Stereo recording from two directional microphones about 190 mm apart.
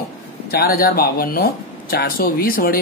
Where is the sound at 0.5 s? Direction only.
50° left (ahead or behind).